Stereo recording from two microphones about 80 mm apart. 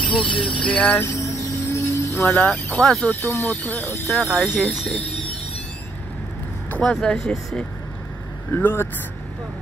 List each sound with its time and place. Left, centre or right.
0.2 s speech: centre
1.7 s music: left
2.2 s speech: centre
3.2 s speech: left
4.1 s speech: centre
4.6 s speech: centre
6.8 s speech: centre
8.5 s speech: left